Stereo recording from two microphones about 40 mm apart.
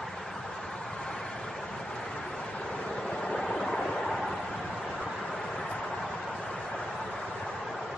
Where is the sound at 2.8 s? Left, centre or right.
Centre.